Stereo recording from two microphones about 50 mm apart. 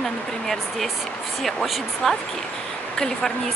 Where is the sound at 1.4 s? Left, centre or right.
Centre.